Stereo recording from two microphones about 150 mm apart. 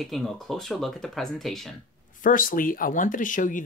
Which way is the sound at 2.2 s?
65° left (ahead or behind).